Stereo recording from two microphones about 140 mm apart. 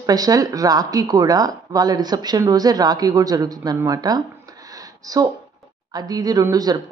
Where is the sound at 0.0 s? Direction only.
25° right (ahead or behind).